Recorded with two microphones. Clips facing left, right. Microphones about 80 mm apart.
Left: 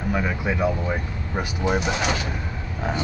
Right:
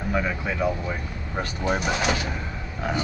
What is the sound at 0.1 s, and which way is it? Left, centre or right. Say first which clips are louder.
Speech: left 1 dB; centre.